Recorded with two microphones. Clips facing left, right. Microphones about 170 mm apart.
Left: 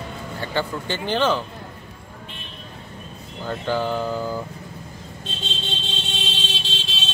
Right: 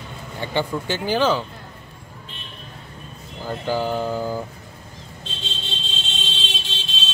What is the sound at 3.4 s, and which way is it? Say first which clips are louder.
Speech: even; 10° right (ahead or behind).